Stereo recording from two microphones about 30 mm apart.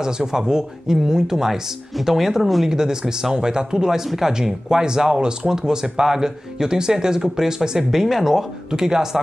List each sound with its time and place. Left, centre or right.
0.0 s speech: right; by 2.7 s centre
2.7 s speech: centre
7.9 s speech: centre
8.7 s speech: right